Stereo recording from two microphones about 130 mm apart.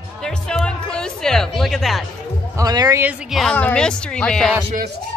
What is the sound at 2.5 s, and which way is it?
Speech, 30° right (ahead or behind).